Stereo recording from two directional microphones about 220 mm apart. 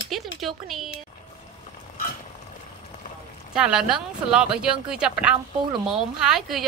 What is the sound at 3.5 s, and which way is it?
Speech, 5° right (ahead or behind).